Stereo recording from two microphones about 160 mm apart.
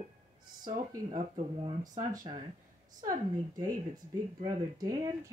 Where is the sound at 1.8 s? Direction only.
25° right (ahead or behind).